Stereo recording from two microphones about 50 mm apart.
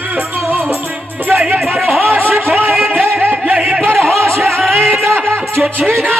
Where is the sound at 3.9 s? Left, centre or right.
Centre.